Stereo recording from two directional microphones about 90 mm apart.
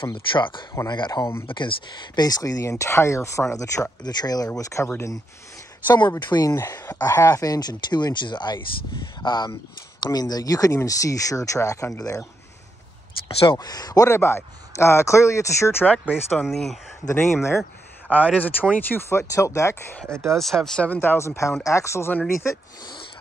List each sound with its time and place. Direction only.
0.0 s speech: 65° left (ahead or behind); by 2.7 s 40° left (ahead or behind)
2.7 s speech: 30° left (ahead or behind)
4.0 s speech: 50° left (ahead or behind)
4.6 s speech: 35° left (ahead or behind)
5.9 s speech: 55° left (ahead or behind)
6.5 s speech: 30° left (ahead or behind)
13.6 s speech: 45° left (ahead or behind)
14.0 s speech: 30° left (ahead or behind)
15.8 s speech: 15° left (ahead or behind)
16.4 s speech: 5° left (ahead or behind)
17.1 s speech: 25° left (ahead or behind)
18.1 s speech: 15° left (ahead or behind); by 19.8 s 35° left (ahead or behind)
20.2 s speech: centre (ahead or behind)
20.8 s speech: 20° left (ahead or behind)